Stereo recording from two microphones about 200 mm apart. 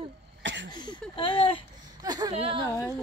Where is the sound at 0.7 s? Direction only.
20° left (ahead or behind).